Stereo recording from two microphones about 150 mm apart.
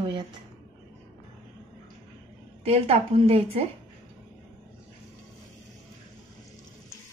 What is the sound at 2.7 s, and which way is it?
A woman's voice, 40° right (ahead or behind).